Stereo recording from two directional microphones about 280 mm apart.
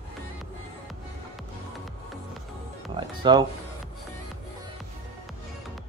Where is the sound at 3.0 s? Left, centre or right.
Centre.